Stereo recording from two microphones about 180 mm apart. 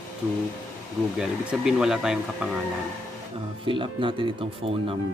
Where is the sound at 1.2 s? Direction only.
5° right (ahead or behind).